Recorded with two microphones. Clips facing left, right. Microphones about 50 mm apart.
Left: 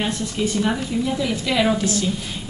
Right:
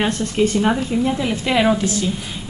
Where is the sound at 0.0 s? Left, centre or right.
Right.